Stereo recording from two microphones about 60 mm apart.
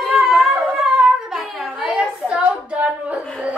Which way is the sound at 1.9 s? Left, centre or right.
Centre.